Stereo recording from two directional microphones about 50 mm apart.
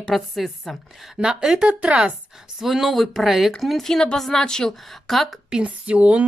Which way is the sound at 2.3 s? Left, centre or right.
Centre.